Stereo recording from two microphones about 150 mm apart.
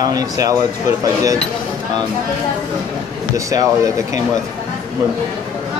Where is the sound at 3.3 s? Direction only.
20° right (ahead or behind).